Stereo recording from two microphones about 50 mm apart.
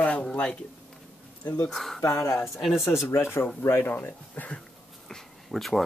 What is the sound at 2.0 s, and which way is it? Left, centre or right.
Speech, left.